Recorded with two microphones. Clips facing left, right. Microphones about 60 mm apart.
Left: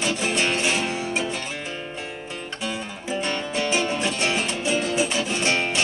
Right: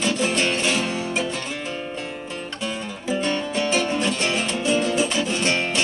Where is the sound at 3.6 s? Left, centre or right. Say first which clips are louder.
Right 1 dB; centre.